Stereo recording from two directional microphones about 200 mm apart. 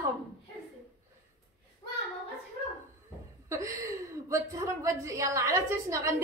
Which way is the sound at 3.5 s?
15° right (ahead or behind).